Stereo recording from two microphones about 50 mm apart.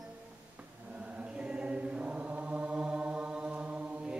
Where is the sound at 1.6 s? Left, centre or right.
Right.